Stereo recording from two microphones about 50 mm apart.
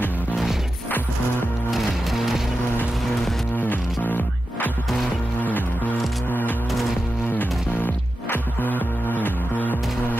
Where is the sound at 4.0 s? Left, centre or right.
Left.